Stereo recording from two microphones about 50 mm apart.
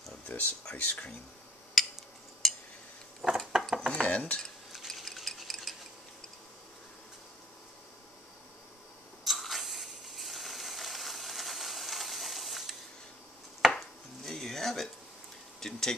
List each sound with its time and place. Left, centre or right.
0.3 s speech: left
0.7 s speech: left
1.8 s a sound: centre
3.9 s cutlery: left
4.8 s stir: centre
9.2 s ratchet: centre
13.6 s chopping: centre
14.3 s a sound: centre